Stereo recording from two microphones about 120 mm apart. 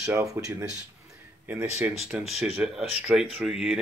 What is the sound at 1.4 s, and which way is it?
Speech, 15° right (ahead or behind).